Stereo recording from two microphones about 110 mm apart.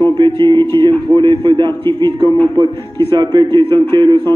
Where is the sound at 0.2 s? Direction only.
45° right (ahead or behind).